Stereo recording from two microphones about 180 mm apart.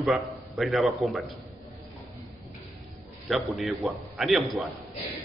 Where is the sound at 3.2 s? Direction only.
Centre (ahead or behind).